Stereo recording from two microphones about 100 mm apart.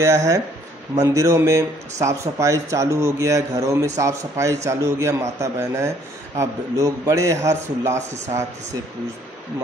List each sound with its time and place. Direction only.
0.0 s a man's voice: 30° right (ahead or behind)